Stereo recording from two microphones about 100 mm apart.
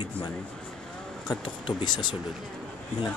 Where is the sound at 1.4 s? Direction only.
55° left (ahead or behind).